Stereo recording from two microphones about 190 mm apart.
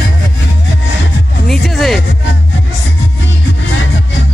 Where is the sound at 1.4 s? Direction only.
Centre (ahead or behind).